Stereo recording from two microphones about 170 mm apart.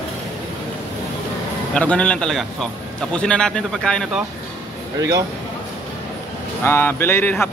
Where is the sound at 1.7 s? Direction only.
5° left (ahead or behind).